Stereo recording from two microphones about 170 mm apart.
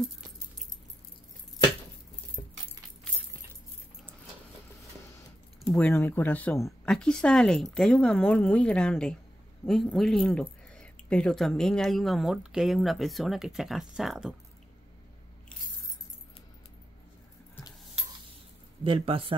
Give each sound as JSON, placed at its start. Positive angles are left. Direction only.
{"t": 5.7, "sound": "speech", "side_deg": 15}
{"t": 18.9, "sound": "speech", "side_deg": -30}